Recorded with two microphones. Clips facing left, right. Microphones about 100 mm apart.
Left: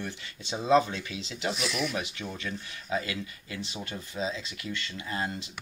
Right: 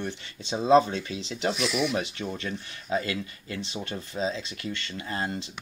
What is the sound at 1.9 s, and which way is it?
Speech, 30° right (ahead or behind).